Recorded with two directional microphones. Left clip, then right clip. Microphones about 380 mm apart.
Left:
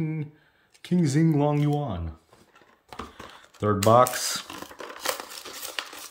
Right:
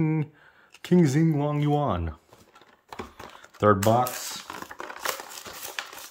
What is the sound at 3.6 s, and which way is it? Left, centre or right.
Speech, centre.